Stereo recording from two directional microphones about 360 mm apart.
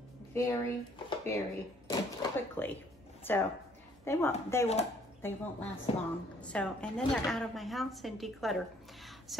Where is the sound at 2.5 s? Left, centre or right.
Centre.